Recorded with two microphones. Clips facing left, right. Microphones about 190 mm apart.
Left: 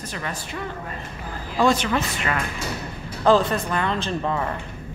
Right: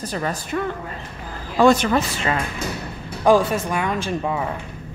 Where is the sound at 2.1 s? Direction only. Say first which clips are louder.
Right 3 dB; 30° right (ahead or behind).